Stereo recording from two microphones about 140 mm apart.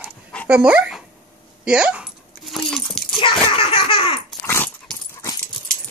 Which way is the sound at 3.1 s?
40° left (ahead or behind).